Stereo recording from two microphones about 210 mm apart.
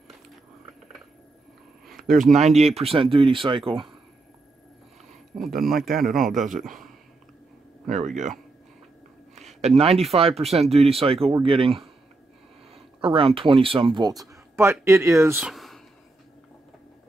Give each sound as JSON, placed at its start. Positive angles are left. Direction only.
{"t": 1.9, "sound": "a sound", "side_deg": 0}
{"t": 2.1, "sound": "speech", "side_deg": -35}
{"t": 5.5, "sound": "a man's voice", "side_deg": -45}
{"t": 6.6, "sound": "speech", "side_deg": 0}
{"t": 7.8, "sound": "speech", "side_deg": -35}
{"t": 9.6, "sound": "speech", "side_deg": -30}
{"t": 15.3, "sound": "a sound", "side_deg": 0}